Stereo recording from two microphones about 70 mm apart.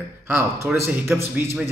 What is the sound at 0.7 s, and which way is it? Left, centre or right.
Speech, right.